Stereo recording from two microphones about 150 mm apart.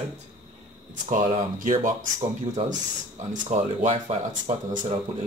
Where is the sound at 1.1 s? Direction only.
60° right (ahead or behind).